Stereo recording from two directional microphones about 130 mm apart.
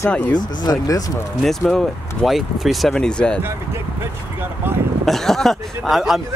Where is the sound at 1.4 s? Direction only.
Centre (ahead or behind).